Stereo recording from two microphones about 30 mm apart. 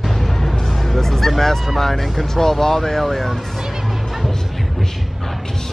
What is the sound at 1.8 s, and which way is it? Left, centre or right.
Speech, centre.